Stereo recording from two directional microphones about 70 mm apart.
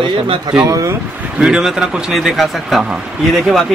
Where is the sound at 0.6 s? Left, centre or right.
Right.